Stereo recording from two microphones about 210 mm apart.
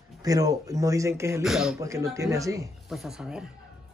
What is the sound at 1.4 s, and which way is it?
Speech, centre (ahead or behind).